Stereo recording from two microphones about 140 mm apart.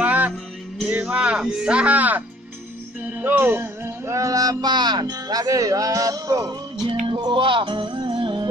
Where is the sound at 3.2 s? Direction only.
15° right (ahead or behind).